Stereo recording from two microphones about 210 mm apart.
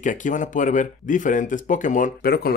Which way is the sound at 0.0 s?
40° left (ahead or behind).